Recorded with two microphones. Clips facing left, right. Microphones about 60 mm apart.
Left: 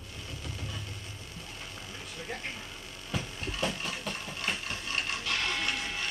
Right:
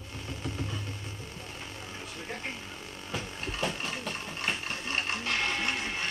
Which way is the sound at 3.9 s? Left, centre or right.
Right.